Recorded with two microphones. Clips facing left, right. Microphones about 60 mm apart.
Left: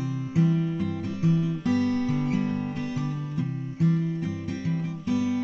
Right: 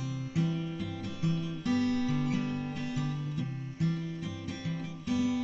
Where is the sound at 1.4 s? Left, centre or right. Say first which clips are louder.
Left 5 dB; left.